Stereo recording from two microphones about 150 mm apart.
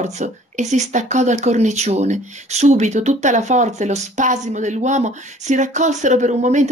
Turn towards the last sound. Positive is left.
turn(degrees=-55)  # may be behind; listen again after turning